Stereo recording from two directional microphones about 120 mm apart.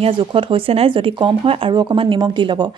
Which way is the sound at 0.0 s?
45° right (ahead or behind).